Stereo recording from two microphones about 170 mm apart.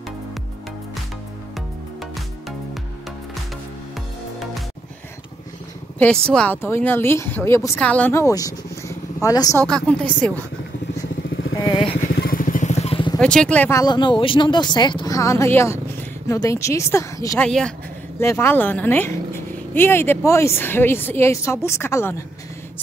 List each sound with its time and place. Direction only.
5.9 s speech: 5° left (ahead or behind)
9.7 s speech: 5° left (ahead or behind)
11.6 s speech: 30° left (ahead or behind)
12.0 s vehicle: 60° left (ahead or behind); by 13.2 s 30° left (ahead or behind)
13.2 s speech: 5° left (ahead or behind)
17.4 s speech: 5° left (ahead or behind)
18.2 s speech: 15° left (ahead or behind)